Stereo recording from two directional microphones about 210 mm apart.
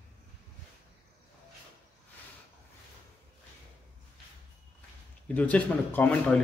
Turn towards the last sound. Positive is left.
turn(degrees=5)  # may be behind; listen again after turning